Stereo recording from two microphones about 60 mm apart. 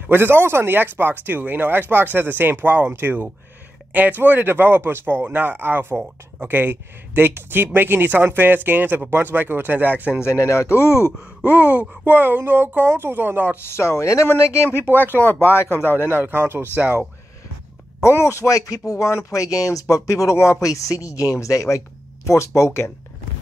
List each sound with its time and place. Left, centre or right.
0.0 s speech: right
10.4 s speech: left
11.5 s speech: right
13.7 s speech: left
16.3 s speech: right
16.7 s speech: right
18.0 s speech: left
18.5 s speech: left